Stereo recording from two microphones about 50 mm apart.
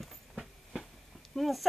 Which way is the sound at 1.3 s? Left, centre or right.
Centre.